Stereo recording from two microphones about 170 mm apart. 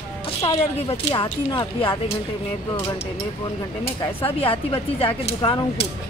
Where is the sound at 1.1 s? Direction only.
25° left (ahead or behind).